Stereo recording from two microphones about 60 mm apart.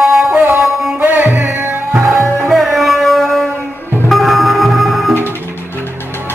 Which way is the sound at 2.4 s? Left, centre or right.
Centre.